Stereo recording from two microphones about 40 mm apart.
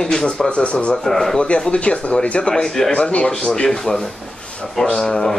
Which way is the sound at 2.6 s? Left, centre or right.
Centre.